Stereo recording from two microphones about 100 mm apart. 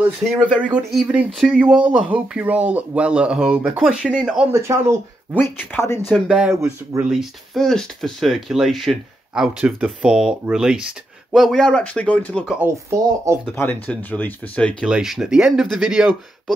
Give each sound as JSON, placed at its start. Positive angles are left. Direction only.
{"t": 0.4, "sound": "speech", "side_deg": -10}
{"t": 4.5, "sound": "speech", "side_deg": -30}
{"t": 5.3, "sound": "speech", "side_deg": 20}
{"t": 6.0, "sound": "speech", "side_deg": -5}
{"t": 6.5, "sound": "speech", "side_deg": -30}
{"t": 7.1, "sound": "speech", "side_deg": 0}
{"t": 12.6, "sound": "speech", "side_deg": -30}
{"t": 13.6, "sound": "speech", "side_deg": 20}
{"t": 14.9, "sound": "speech", "side_deg": -5}